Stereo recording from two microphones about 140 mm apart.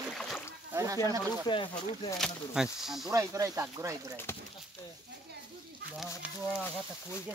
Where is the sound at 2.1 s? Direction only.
Centre (ahead or behind).